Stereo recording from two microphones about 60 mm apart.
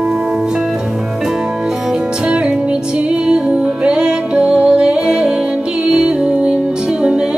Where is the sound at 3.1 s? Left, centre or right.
Centre.